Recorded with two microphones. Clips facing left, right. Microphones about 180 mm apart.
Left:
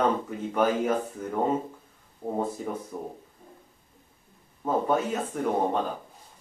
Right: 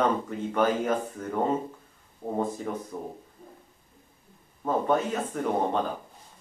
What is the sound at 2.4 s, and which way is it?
Speech, 10° left (ahead or behind).